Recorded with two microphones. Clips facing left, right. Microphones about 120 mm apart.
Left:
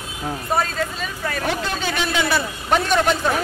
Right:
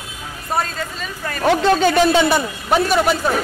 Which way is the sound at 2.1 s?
25° right (ahead or behind).